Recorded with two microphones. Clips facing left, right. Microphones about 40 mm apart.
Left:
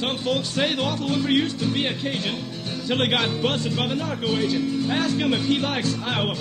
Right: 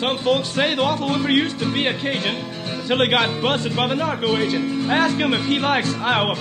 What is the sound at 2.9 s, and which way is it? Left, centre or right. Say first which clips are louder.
Speech: right 4 dB; right.